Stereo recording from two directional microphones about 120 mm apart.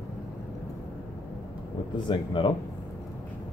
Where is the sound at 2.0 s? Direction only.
45° left (ahead or behind).